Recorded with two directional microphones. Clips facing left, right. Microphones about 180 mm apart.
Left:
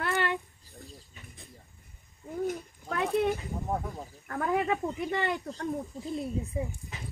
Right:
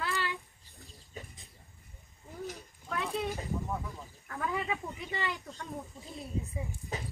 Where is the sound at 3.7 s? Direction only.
50° left (ahead or behind).